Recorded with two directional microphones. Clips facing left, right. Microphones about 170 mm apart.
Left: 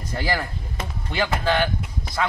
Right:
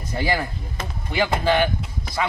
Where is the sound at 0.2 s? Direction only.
15° right (ahead or behind).